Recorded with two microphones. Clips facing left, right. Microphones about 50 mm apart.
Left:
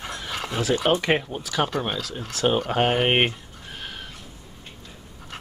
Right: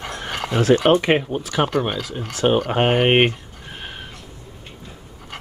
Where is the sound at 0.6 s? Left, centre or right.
Right.